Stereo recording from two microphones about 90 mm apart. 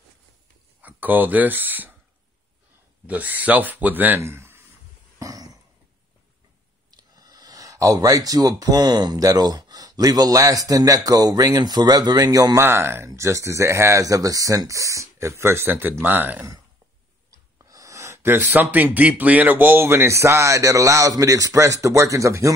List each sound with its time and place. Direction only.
0.8 s speech: 20° right (ahead or behind)
3.1 s speech: 20° right (ahead or behind)
5.2 s a sound: 40° right (ahead or behind)
6.9 s speech: 45° right (ahead or behind)
12.5 s speech: 25° right (ahead or behind)
17.3 s speech: 40° right (ahead or behind)